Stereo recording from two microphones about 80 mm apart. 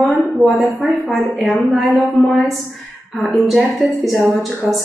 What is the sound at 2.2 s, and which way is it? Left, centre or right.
Speech, left.